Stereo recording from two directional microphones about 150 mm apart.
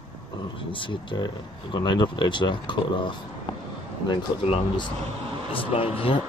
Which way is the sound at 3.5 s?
35° left (ahead or behind).